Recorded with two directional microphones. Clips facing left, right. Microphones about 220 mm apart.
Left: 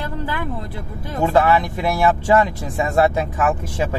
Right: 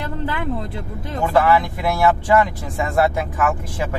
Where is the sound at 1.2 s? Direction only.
25° left (ahead or behind).